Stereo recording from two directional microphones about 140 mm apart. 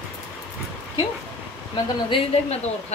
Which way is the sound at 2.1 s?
45° left (ahead or behind).